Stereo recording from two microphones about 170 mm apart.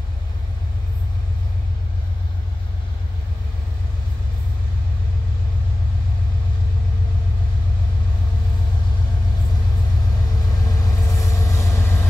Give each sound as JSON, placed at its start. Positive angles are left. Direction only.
{"t": 10.6, "sound": "rumble", "side_deg": 20}
{"t": 11.0, "sound": "train", "side_deg": 20}